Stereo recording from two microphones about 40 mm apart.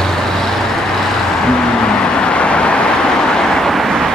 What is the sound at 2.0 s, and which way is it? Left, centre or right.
Vehicle, left.